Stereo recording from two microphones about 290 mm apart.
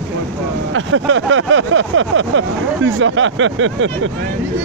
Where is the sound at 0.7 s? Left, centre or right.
Right.